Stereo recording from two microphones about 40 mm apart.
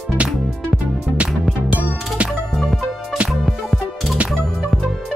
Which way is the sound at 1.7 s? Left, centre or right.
Right.